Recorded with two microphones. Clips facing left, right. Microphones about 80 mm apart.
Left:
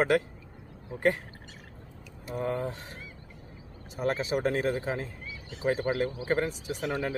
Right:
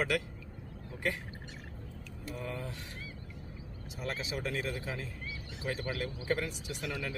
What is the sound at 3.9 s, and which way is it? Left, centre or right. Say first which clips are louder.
Speech: left 10 dB; left.